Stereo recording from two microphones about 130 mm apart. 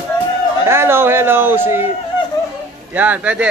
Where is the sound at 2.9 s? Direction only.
10° right (ahead or behind).